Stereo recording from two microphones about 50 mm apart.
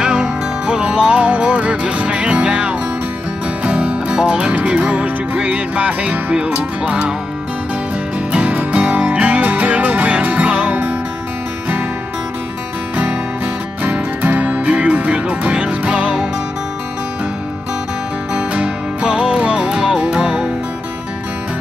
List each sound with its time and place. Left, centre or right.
0.0 s music: right
8.3 s music: right
13.8 s music: right
18.3 s music: right